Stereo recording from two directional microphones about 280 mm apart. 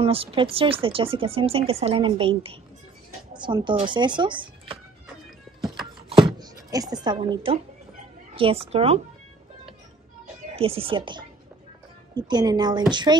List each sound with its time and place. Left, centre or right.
0.0 s speech: centre
6.0 s a sound: centre
8.4 s speech: centre
10.5 s speech: centre